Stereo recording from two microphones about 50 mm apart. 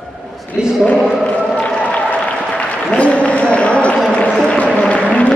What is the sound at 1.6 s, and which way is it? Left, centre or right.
Applause, left.